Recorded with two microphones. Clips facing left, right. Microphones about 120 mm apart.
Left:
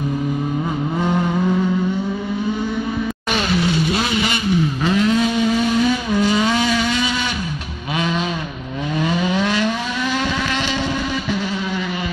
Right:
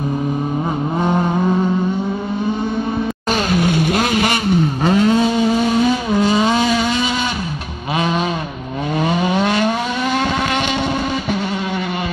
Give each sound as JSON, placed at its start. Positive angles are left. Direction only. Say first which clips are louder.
{"t": 1.0, "sound": "vehicle", "louder": "right 2 dB", "side_deg": -40}
{"t": 3.3, "sound": "vehicle", "louder": "right 3 dB", "side_deg": -45}
{"t": 4.9, "sound": "vehicle", "louder": "right 3 dB", "side_deg": -35}
{"t": 9.4, "sound": "vehicle", "louder": "right 3 dB", "side_deg": -45}